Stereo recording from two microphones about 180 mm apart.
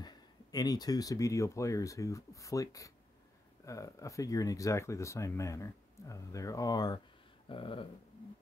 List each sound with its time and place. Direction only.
0.0 s speech: 20° left (ahead or behind)